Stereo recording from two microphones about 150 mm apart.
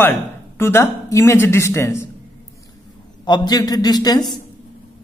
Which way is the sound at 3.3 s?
25° left (ahead or behind).